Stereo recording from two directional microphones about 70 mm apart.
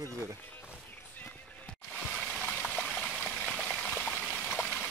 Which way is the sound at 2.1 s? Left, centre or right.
Centre.